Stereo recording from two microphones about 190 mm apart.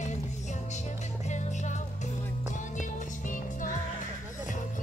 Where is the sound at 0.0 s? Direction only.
40° left (ahead or behind).